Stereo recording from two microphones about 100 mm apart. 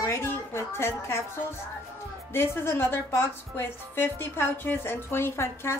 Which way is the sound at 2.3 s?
25° left (ahead or behind).